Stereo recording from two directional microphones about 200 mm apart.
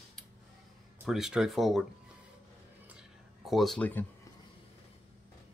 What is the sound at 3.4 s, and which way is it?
Speech, centre (ahead or behind).